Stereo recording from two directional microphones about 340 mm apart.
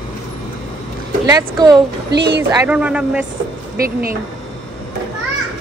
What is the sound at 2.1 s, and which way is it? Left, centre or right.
Speech, right.